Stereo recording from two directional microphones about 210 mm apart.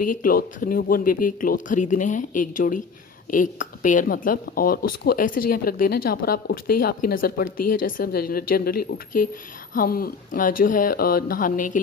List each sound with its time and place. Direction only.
0.1 s speech: 45° left (ahead or behind)